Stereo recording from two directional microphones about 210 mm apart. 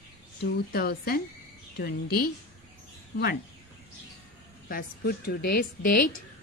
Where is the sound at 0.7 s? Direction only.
45° left (ahead or behind).